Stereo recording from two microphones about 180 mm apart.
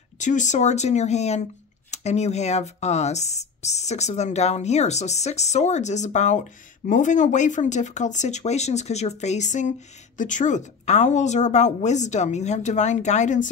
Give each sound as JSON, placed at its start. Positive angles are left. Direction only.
{"t": 0.2, "sound": "speech", "side_deg": 45}